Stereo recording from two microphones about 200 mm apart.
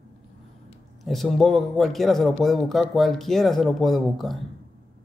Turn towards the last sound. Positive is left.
turn(degrees=0)  # may be behind; listen again after turning